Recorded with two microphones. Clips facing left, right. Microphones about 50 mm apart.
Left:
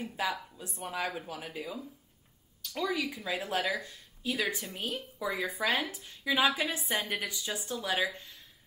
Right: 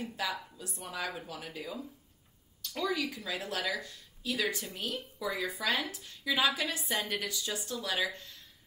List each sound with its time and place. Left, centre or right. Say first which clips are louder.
0.2 s speech: left 4 dB; left
1.3 s speech: left 2 dB; centre
2.7 s speech: left 1 dB; centre
3.1 s speech: left 3 dB; centre